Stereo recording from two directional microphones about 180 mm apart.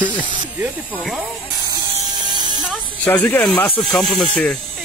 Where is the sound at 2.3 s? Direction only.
25° right (ahead or behind).